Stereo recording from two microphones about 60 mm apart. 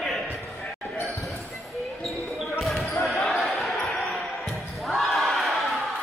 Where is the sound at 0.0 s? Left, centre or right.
Centre.